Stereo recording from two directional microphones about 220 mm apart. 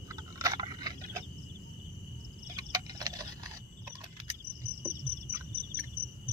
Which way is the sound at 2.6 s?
15° right (ahead or behind).